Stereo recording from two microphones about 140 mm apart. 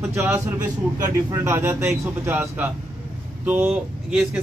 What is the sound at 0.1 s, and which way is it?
A man's voice, 20° right (ahead or behind).